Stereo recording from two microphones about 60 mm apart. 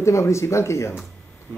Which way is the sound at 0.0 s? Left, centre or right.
Left.